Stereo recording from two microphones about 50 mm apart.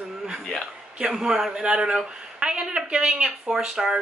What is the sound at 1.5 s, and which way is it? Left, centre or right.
Speech, centre.